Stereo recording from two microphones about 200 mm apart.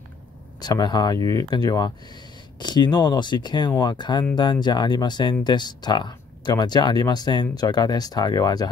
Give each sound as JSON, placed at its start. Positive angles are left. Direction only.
{"t": 0.6, "sound": "speech", "side_deg": 20}